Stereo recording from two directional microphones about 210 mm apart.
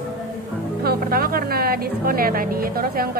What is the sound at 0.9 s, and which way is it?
A woman's voice, 45° right (ahead or behind).